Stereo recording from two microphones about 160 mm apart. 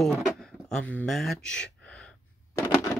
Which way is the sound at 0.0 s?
Centre (ahead or behind).